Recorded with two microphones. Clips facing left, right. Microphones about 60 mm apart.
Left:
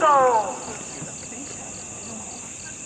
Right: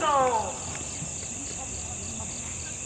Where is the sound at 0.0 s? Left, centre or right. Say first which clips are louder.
Left 7 dB; left.